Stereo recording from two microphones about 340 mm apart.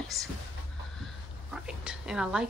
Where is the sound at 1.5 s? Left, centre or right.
Centre.